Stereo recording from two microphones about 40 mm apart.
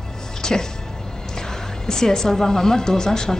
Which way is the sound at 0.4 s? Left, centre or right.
Centre.